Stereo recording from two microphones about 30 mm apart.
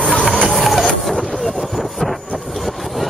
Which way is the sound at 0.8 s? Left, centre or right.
Centre.